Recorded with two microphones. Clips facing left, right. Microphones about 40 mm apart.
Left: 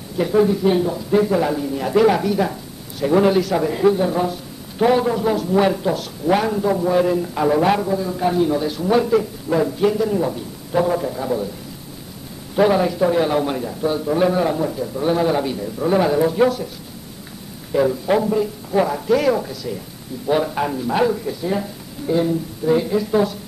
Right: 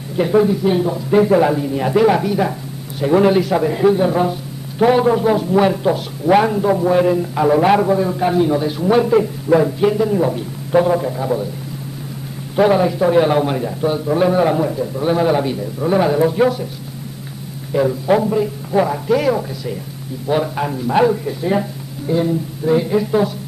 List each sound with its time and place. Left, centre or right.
0.4 s a man's voice: centre
1.1 s a man's voice: right
5.5 s a man's voice: centre
5.9 s a man's voice: centre
7.7 s a man's voice: right
8.1 s a man's voice: centre
10.3 s a woman's voice: right
10.9 s a man's voice: centre
12.5 s a man's voice: centre
13.1 s a man's voice: right
14.4 s a man's voice: right
17.7 s a man's voice: centre
20.9 s a man's voice: centre
22.0 s a man's voice: centre